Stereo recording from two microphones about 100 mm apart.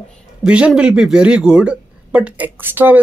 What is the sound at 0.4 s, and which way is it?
Speech, 10° right (ahead or behind).